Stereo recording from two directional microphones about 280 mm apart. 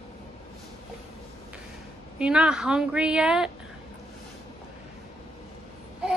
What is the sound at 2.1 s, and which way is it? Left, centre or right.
A woman's voice, centre.